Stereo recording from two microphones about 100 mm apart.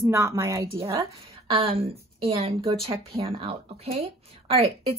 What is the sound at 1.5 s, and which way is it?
Speech, 70° right (ahead or behind).